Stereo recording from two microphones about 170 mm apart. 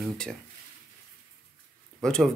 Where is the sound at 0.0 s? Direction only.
5° left (ahead or behind).